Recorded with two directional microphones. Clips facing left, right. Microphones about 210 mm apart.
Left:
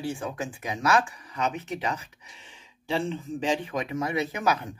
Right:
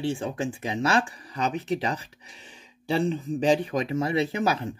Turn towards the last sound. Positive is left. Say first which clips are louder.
# right 2 dB
turn(degrees=-30)  # may be behind; listen again after turning